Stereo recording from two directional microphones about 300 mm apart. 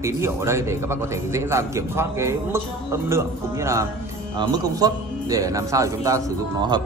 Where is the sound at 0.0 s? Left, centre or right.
Centre.